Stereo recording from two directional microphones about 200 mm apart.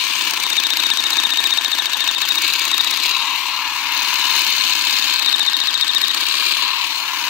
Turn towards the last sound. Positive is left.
turn(degrees=-5)  # may be behind; listen again after turning